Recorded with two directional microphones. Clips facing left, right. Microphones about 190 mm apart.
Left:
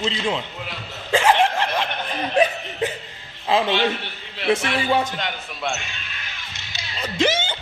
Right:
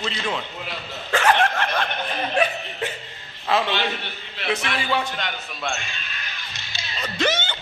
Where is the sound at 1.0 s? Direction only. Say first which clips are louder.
Left 2 dB; 15° left (ahead or behind).